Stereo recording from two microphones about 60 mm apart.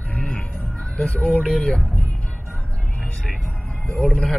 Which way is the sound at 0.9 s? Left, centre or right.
Centre.